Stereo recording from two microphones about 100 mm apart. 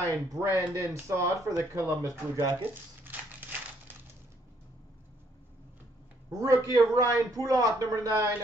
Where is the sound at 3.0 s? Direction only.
20° right (ahead or behind).